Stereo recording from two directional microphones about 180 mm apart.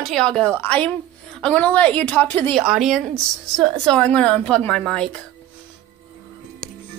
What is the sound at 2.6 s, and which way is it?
A woman's voice, centre (ahead or behind).